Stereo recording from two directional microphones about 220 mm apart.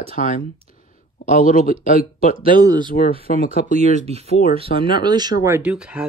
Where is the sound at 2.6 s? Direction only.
15° right (ahead or behind).